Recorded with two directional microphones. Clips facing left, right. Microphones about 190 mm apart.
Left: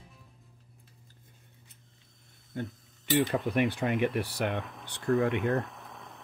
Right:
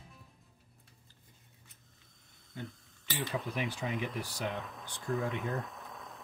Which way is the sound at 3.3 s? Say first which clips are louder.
Left 8 dB; 60° left (ahead or behind).